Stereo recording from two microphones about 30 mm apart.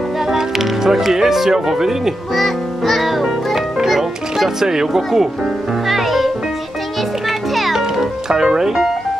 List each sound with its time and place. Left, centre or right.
0.3 s speech: centre
2.3 s music: centre
5.9 s music: centre
8.4 s speech: right
8.6 s speech: centre